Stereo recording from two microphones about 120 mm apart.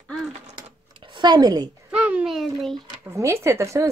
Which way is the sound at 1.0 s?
40° right (ahead or behind).